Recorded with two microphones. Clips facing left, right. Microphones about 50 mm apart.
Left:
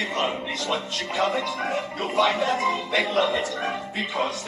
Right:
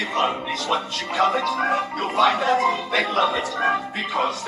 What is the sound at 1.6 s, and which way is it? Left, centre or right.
Music, right.